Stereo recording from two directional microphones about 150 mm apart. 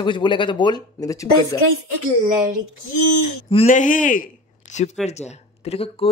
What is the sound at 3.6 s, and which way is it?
Speech, 60° left (ahead or behind).